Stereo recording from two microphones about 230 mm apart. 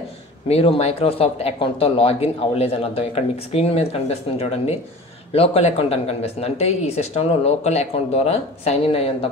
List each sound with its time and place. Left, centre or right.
0.5 s speech: left